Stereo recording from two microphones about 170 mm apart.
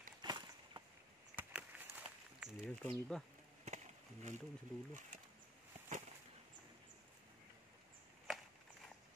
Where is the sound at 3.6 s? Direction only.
45° right (ahead or behind).